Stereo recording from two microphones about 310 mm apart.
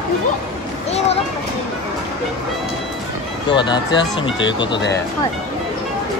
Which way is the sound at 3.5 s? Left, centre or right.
Centre.